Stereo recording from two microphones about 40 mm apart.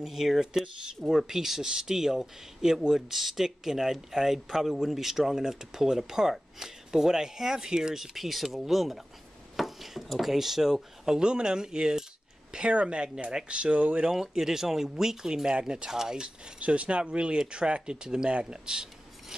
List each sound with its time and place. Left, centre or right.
0.0 s speech: centre; by 14.1 s right
14.2 s speech: centre
16.5 s speech: right